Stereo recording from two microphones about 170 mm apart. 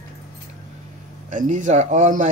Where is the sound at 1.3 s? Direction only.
45° right (ahead or behind).